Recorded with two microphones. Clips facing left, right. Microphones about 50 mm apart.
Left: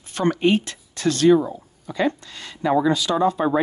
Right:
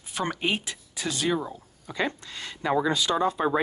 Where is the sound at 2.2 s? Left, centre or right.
Centre.